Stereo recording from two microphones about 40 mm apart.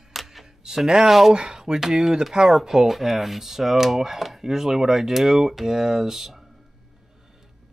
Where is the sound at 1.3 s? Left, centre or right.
Right.